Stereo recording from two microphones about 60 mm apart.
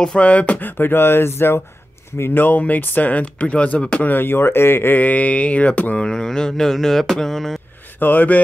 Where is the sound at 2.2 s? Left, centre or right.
Left.